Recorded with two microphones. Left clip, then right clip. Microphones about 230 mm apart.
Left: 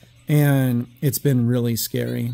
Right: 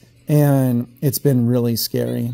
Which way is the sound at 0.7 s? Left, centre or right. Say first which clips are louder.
Right 3 dB; centre.